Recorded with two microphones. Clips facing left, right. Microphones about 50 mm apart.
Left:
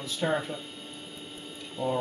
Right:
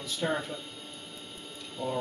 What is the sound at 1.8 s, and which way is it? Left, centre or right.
Speech, centre.